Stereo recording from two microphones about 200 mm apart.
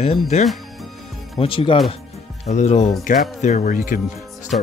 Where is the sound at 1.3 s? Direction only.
25° left (ahead or behind).